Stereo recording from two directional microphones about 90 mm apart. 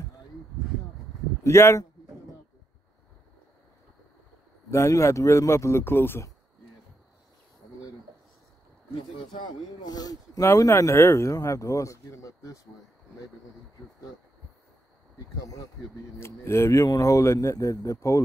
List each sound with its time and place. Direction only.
1.4 s speech: 30° left (ahead or behind)
4.6 s speech: 35° left (ahead or behind)
9.4 s speech: 45° left (ahead or behind)
10.4 s speech: 30° left (ahead or behind)
15.1 s speech: 45° left (ahead or behind)
16.2 s speech: 30° left (ahead or behind)